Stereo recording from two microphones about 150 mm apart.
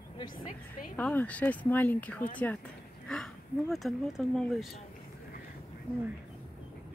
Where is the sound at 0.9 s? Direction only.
10° left (ahead or behind).